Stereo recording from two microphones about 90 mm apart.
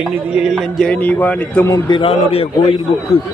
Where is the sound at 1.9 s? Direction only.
85° left.